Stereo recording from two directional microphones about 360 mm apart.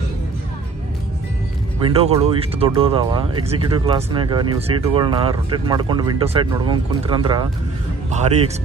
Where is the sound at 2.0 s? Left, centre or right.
Centre.